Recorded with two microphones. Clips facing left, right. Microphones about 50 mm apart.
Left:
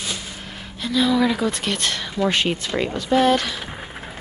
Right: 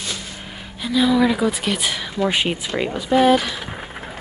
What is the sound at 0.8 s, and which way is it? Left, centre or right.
Speech, centre.